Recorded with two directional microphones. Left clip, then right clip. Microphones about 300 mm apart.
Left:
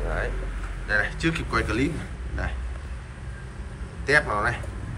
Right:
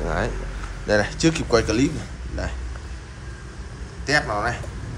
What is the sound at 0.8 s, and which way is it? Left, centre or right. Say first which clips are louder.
Speech: right 4 dB; centre.